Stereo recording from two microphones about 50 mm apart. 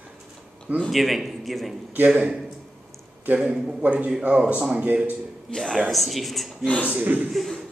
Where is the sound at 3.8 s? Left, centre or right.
Right.